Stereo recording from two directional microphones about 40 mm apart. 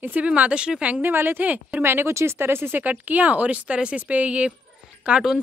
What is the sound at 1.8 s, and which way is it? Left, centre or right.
Speech, right.